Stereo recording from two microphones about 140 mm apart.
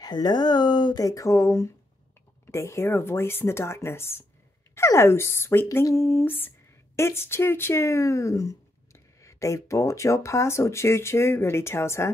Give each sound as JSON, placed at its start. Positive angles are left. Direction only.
{"t": 0.0, "sound": "speech", "side_deg": 30}